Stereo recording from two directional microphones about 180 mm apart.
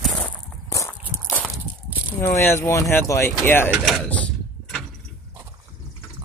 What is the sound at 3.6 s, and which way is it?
Mechanisms, 5° right (ahead or behind).